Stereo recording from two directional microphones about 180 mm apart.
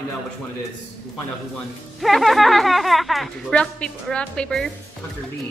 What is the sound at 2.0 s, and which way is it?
Speech, centre (ahead or behind).